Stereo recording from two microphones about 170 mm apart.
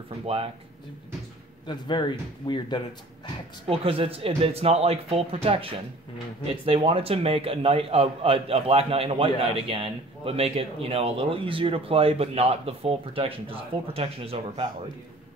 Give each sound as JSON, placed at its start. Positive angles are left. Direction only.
{"t": 1.7, "sound": "speech", "side_deg": 25}
{"t": 3.6, "sound": "a man's voice", "side_deg": -35}